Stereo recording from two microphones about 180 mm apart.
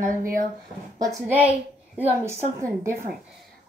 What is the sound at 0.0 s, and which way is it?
Speech, 50° right (ahead or behind).